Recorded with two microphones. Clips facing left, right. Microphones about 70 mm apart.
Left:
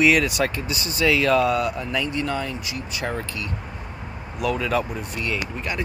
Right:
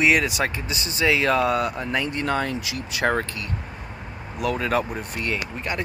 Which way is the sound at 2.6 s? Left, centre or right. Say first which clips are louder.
Right 3 dB; right.